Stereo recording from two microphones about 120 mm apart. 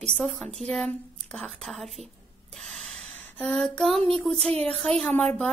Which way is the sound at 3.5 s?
Centre (ahead or behind).